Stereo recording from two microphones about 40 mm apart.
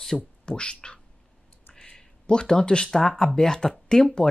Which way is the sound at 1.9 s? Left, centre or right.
Left.